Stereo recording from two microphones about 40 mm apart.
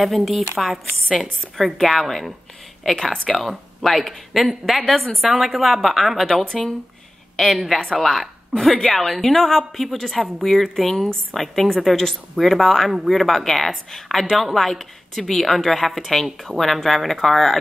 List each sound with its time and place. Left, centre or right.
0.0 s a woman's voice: centre
3.1 s speech: centre
3.3 s a woman's voice: centre
6.2 s a woman's voice: centre
7.7 s a woman's voice: centre